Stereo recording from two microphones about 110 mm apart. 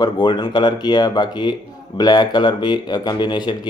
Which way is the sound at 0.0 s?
40° left (ahead or behind).